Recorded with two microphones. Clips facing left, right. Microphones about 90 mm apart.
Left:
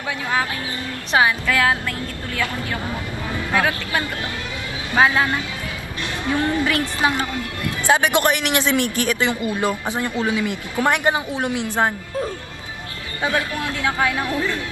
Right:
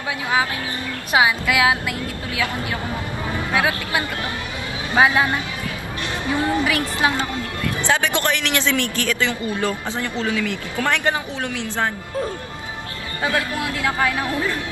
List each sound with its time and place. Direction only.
1.1 s a woman's voice: 10° right (ahead or behind)
7.9 s a man's voice: 20° left (ahead or behind)
13.8 s speech: centre (ahead or behind)